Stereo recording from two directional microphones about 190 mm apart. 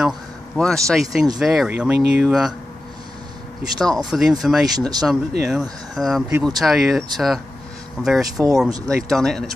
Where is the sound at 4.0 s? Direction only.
Centre (ahead or behind).